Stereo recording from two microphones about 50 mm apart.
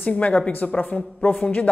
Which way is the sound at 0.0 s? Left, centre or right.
Left.